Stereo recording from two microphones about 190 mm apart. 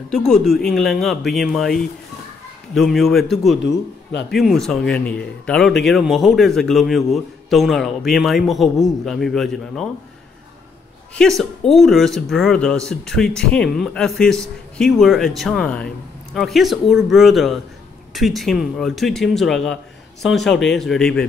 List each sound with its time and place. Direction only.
0.1 s speech: centre (ahead or behind)
3.6 s a man's voice: 65° left (ahead or behind)
4.3 s speech: centre (ahead or behind)
11.1 s speech: centre (ahead or behind)